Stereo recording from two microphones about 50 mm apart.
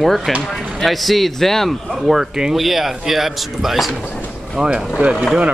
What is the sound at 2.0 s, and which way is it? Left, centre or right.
Speech, centre.